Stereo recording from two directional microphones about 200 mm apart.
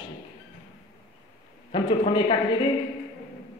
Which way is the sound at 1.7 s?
25° left (ahead or behind).